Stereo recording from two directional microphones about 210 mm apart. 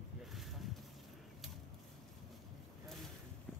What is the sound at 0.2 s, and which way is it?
Boat, centre (ahead or behind).